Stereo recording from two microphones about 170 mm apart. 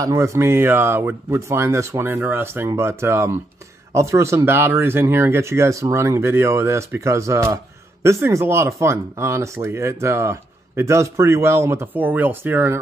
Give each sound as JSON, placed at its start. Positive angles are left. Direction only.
{"t": 0.0, "sound": "speech", "side_deg": -20}